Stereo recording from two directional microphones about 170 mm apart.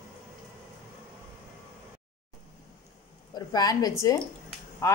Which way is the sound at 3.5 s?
20° left (ahead or behind).